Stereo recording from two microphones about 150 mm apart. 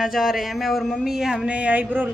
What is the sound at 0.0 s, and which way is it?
A woman's voice, centre (ahead or behind).